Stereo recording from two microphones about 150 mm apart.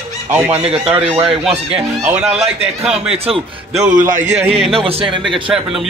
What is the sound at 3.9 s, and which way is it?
Speech, 60° right (ahead or behind).